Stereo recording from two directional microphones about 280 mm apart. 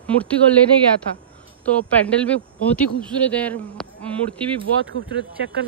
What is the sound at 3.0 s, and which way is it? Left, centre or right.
Speech, centre.